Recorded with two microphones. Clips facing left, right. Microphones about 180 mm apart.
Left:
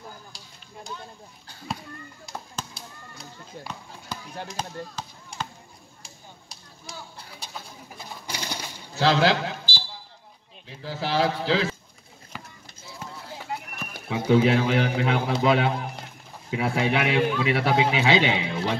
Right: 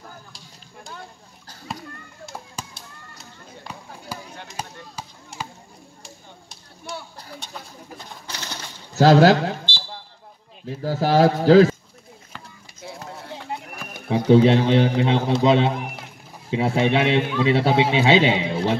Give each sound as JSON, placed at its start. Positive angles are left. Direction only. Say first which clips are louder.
{"t": 2.2, "sound": "chop", "louder": "right 1 dB", "side_deg": -5}
{"t": 4.5, "sound": "chop", "louder": "left 1 dB", "side_deg": -5}
{"t": 8.0, "sound": "sewing machine", "louder": "left 4 dB", "side_deg": 10}
{"t": 8.9, "sound": "speech", "louder": "right 7 dB", "side_deg": -45}
{"t": 10.6, "sound": "speech", "louder": "right 8 dB", "side_deg": -45}
{"t": 12.8, "sound": "a sound", "louder": "right 8 dB", "side_deg": -60}
{"t": 13.3, "sound": "a sound", "louder": "right 2 dB", "side_deg": -25}
{"t": 14.3, "sound": "a man's voice", "louder": "right 5 dB", "side_deg": -30}